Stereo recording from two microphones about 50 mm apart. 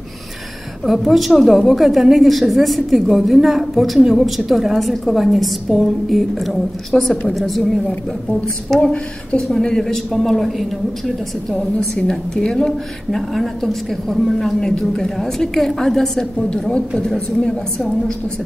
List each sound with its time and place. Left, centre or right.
0.8 s a woman's voice: centre
8.8 s speech: left
9.4 s a woman's voice: centre